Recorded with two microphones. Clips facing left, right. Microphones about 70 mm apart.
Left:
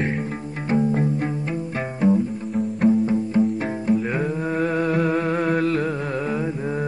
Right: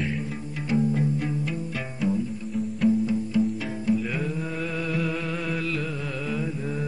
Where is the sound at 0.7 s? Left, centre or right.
Left.